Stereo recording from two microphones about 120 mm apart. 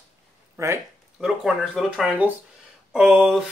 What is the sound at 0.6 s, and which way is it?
Speech, 25° right (ahead or behind).